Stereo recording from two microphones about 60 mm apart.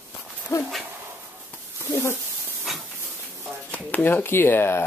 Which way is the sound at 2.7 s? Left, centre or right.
Centre.